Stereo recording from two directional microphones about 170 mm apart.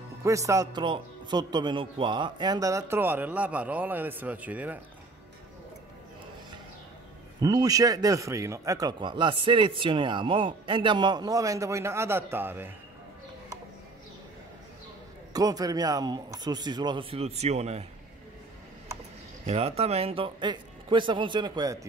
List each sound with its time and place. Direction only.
0.2 s speech: 20° right (ahead or behind)
7.3 s a man's voice: 20° right (ahead or behind)
15.3 s a man's voice: 20° right (ahead or behind); by 17.8 s 40° right (ahead or behind)
19.4 s a man's voice: 35° right (ahead or behind)